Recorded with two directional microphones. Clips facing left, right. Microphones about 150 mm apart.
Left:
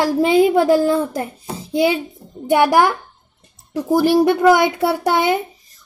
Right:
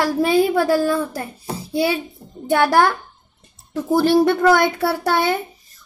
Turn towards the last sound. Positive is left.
turn(degrees=20)  # may be behind; listen again after turning